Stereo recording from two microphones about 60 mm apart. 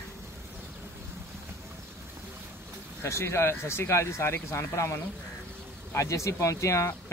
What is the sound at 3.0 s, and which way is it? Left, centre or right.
Speech, left.